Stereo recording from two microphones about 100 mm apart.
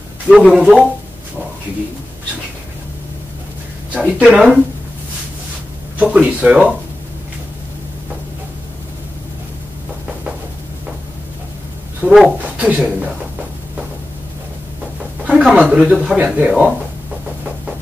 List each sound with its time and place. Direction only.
0.3 s speech: 5° right (ahead or behind)
3.9 s speech: 10° right (ahead or behind)
5.9 s speech: 15° right (ahead or behind)
12.0 s speech: 15° right (ahead or behind)
15.2 s speech: 10° right (ahead or behind)